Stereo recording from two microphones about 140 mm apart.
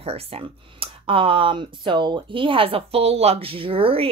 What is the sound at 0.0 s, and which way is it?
Speech, 45° right (ahead or behind).